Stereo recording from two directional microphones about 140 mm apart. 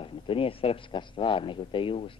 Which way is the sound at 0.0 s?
40° left (ahead or behind).